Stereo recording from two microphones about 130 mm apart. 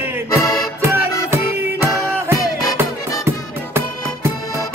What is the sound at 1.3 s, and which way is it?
Music, 20° right (ahead or behind).